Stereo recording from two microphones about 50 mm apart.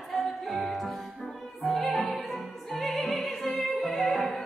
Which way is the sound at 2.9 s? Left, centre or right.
Centre.